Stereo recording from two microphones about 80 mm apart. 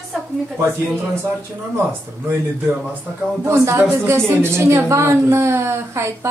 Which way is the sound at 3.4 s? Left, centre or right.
Right.